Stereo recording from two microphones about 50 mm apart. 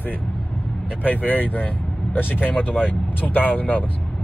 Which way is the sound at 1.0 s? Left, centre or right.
Left.